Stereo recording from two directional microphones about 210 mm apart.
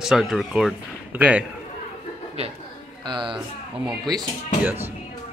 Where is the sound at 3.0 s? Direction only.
20° right (ahead or behind).